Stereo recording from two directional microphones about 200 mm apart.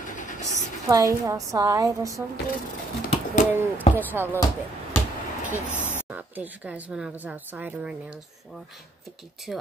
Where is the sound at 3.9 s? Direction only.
10° right (ahead or behind).